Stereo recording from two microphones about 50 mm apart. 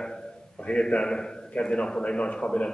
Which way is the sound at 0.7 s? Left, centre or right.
Left.